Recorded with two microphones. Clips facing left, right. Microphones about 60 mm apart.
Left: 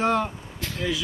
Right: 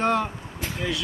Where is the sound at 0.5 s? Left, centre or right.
Centre.